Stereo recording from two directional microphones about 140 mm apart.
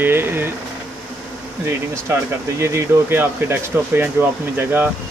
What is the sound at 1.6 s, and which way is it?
Speech, 20° right (ahead or behind).